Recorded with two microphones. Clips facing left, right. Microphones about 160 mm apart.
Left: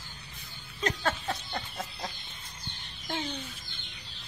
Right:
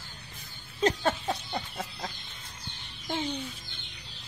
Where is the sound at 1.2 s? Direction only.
10° right (ahead or behind).